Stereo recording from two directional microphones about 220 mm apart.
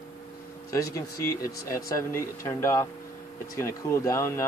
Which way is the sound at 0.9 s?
15° left (ahead or behind).